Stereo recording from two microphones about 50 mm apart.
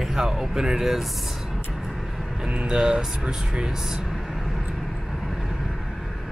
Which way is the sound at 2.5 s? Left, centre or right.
Centre.